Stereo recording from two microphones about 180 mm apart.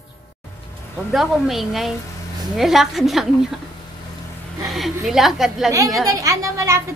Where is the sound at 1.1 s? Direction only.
Centre (ahead or behind).